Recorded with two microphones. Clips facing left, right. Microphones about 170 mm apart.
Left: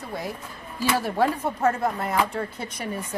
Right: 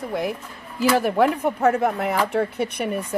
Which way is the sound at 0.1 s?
65° right (ahead or behind).